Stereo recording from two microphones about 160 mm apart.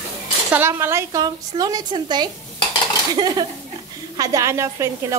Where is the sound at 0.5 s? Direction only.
15° right (ahead or behind).